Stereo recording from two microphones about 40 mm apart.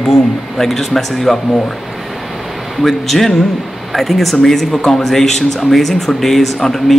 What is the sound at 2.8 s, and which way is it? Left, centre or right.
Speech, centre.